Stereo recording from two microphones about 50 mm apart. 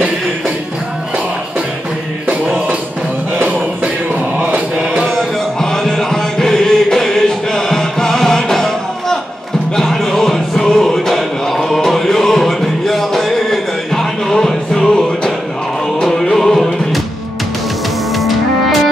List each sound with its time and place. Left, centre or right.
3.4 s music: right
4.7 s music: centre
5.6 s music: centre
18.1 s music: centre